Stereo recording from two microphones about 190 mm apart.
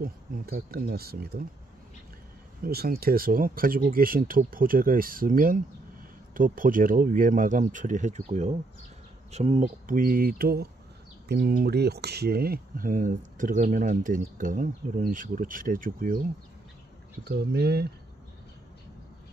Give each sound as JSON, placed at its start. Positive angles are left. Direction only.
{"t": 0.0, "sound": "speech", "side_deg": -50}
{"t": 2.6, "sound": "speech", "side_deg": -55}
{"t": 17.2, "sound": "speech", "side_deg": -60}